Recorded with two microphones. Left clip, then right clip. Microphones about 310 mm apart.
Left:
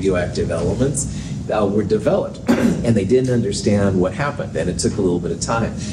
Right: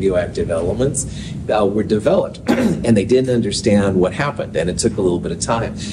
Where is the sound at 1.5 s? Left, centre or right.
Right.